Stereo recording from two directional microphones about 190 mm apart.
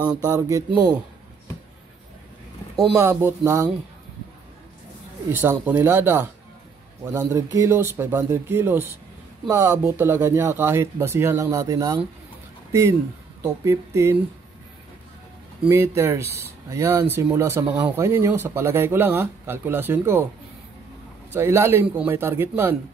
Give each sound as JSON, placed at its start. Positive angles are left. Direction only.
{"t": 0.3, "sound": "speech", "side_deg": -15}
{"t": 2.7, "sound": "speech", "side_deg": 0}
{"t": 3.0, "sound": "speech", "side_deg": -15}
{"t": 5.3, "sound": "speech", "side_deg": -10}
{"t": 13.4, "sound": "speech", "side_deg": -15}
{"t": 15.6, "sound": "speech", "side_deg": -10}
{"t": 21.3, "sound": "speech", "side_deg": -15}